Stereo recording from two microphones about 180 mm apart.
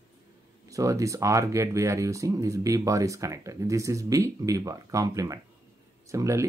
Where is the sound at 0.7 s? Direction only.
20° right (ahead or behind).